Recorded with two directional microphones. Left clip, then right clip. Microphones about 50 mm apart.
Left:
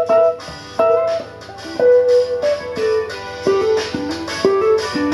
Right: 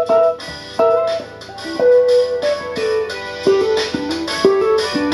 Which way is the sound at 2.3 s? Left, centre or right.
Right.